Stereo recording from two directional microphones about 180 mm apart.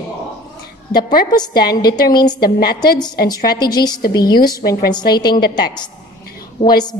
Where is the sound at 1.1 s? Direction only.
25° left (ahead or behind).